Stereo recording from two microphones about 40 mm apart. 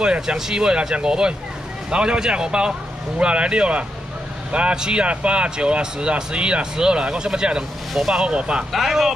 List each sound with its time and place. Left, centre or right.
0.0 s speech: right
4.7 s speech: centre
5.0 s speech: right
8.7 s speech: centre